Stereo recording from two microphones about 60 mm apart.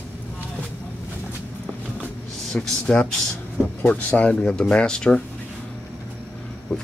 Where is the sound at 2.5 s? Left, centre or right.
Centre.